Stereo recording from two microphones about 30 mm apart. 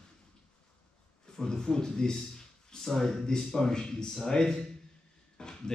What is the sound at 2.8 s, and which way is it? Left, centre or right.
Speech, centre.